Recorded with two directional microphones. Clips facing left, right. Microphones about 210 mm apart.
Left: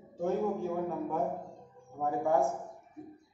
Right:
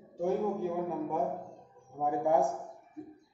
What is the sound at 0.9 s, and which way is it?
A man's voice, 10° right (ahead or behind).